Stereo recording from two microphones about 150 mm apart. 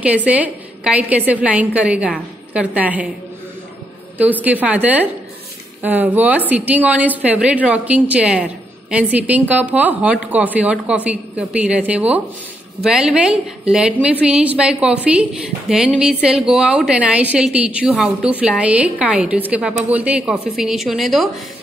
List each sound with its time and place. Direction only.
0.0 s a woman's voice: 10° right (ahead or behind)
4.2 s a woman's voice: 10° right (ahead or behind)